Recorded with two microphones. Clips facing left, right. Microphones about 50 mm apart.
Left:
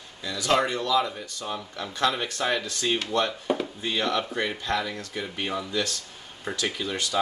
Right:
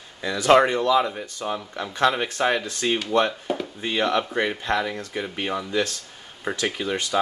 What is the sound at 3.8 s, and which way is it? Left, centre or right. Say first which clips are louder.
Speech: right 4 dB; right.